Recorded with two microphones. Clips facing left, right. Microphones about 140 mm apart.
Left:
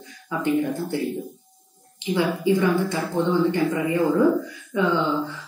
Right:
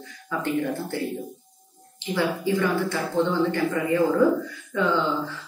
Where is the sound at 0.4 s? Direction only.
15° left (ahead or behind).